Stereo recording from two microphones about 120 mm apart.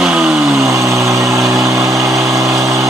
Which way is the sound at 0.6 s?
25° right (ahead or behind).